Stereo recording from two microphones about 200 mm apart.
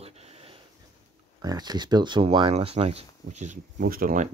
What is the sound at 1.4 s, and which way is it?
Speech, 20° right (ahead or behind).